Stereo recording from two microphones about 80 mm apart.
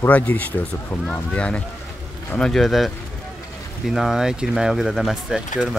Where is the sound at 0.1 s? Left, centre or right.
Left.